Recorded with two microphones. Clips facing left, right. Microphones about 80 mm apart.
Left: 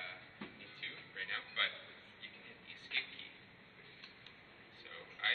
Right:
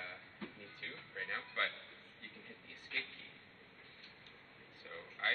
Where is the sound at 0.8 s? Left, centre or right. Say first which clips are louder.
Right 2 dB; centre.